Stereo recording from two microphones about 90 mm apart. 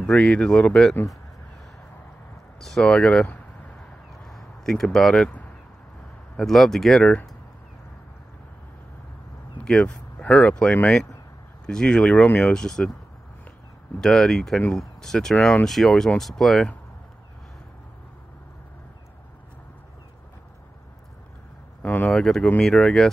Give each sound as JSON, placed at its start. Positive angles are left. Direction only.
{"t": 0.0, "sound": "speech", "side_deg": 10}
{"t": 2.6, "sound": "speech", "side_deg": 5}
{"t": 4.2, "sound": "a sound", "side_deg": 5}
{"t": 6.3, "sound": "speech", "side_deg": 5}
{"t": 9.7, "sound": "speech", "side_deg": 10}
{"t": 14.0, "sound": "speech", "side_deg": 5}
{"t": 15.3, "sound": "speech", "side_deg": 15}
{"t": 15.6, "sound": "speech", "side_deg": 5}
{"t": 21.8, "sound": "speech", "side_deg": 15}